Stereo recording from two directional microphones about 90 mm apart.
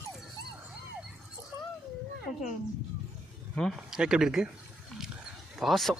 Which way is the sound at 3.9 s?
5° right (ahead or behind).